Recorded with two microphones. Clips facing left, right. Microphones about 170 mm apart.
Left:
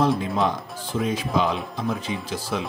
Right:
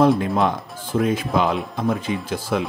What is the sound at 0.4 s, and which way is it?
Speech, 55° right (ahead or behind).